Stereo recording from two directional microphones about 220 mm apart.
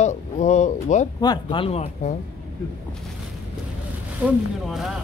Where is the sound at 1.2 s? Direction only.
20° left (ahead or behind).